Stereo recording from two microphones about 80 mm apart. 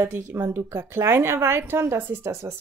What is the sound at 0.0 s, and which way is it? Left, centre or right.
A woman's voice, right.